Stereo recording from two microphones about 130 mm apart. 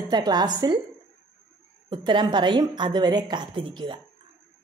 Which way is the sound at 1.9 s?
35° right (ahead or behind).